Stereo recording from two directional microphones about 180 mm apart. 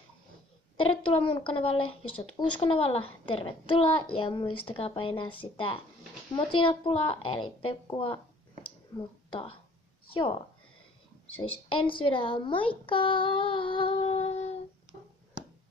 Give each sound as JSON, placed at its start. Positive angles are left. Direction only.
{"t": 0.7, "sound": "a woman's voice", "side_deg": 30}